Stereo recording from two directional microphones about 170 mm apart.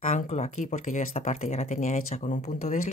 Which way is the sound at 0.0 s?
40° left (ahead or behind).